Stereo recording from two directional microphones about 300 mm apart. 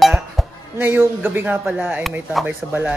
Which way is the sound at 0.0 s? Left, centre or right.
Centre.